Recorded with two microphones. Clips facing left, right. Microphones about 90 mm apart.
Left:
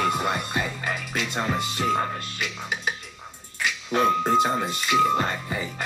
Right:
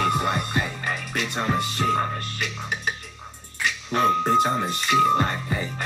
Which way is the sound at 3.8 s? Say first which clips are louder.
Even; 15° left (ahead or behind).